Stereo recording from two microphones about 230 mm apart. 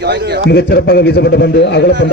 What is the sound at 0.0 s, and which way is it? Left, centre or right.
Speech, right.